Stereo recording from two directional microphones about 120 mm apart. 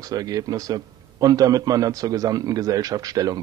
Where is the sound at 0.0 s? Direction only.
30° right (ahead or behind).